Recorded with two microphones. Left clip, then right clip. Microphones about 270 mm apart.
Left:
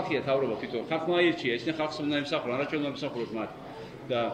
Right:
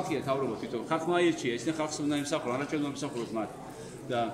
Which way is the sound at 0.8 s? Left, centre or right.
Right.